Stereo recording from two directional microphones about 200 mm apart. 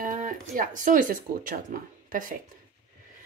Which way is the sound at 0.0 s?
40° right (ahead or behind).